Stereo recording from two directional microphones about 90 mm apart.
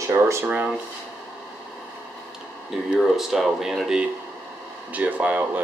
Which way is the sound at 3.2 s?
5° right (ahead or behind).